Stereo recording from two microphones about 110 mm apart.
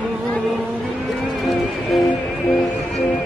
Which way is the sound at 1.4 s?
Centre (ahead or behind).